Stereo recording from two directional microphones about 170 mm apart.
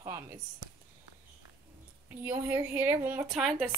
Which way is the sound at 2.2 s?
10° right (ahead or behind).